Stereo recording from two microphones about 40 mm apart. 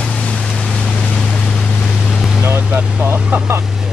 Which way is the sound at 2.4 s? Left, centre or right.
Right.